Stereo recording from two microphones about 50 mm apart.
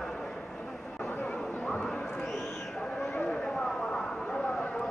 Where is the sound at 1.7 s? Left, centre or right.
Centre.